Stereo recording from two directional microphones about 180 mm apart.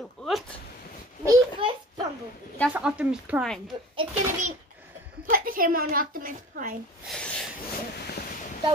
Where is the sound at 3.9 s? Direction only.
40° right (ahead or behind).